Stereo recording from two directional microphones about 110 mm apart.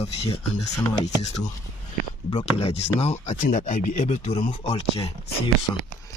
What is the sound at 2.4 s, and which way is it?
Speech, 70° left (ahead or behind).